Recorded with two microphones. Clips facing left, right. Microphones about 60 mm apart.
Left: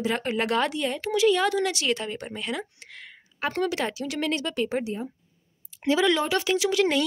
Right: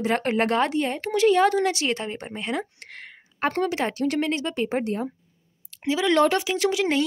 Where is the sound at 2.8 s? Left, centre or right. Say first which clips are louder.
Right 3 dB; right.